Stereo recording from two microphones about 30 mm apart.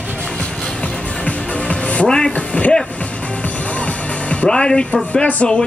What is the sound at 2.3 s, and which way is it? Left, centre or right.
Speech, left.